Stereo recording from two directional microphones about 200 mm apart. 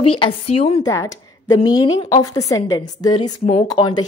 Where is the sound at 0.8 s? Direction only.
15° left (ahead or behind).